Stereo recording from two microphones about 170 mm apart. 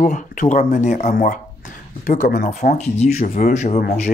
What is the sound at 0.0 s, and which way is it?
Speech, 50° left (ahead or behind).